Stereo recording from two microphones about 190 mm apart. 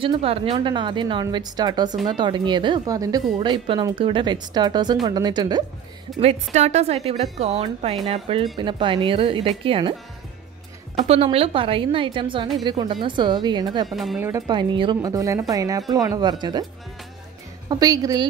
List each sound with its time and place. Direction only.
0.0 s speech: 30° right (ahead or behind)
6.1 s a woman's voice: 35° right (ahead or behind)
11.0 s speech: 30° right (ahead or behind)
13.8 s speech: centre (ahead or behind)
14.2 s speech: 20° right (ahead or behind)
17.6 s speech: 20° right (ahead or behind)